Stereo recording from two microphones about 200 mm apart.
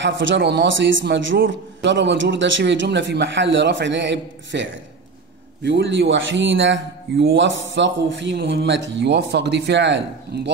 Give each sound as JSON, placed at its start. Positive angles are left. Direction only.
{"t": 0.0, "sound": "a man's voice", "side_deg": -65}